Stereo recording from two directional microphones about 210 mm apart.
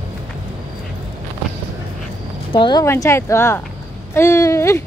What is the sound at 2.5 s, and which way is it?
Speech, 20° left (ahead or behind).